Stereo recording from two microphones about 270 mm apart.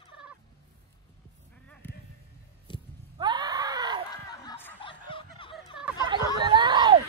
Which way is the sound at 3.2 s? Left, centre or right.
Centre.